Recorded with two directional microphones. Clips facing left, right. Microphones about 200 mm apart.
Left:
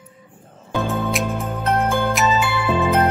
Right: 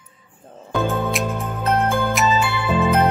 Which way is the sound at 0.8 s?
Centre (ahead or behind).